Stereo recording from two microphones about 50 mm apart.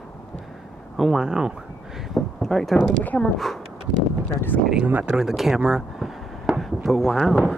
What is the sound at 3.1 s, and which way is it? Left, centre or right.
Speech, left.